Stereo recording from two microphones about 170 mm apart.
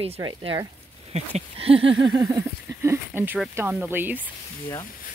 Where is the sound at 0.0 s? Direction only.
30° right (ahead or behind).